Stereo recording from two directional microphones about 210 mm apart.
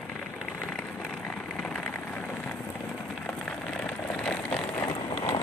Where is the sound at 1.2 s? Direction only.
5° left (ahead or behind).